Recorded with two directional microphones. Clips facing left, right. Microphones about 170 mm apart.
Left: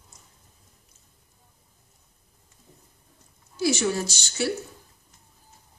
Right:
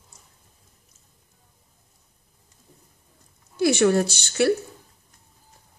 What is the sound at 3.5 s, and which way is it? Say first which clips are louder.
Speech: right 6 dB; 60° right (ahead or behind).